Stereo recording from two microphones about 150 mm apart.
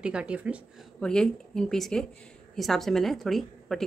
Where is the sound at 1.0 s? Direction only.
5° left (ahead or behind).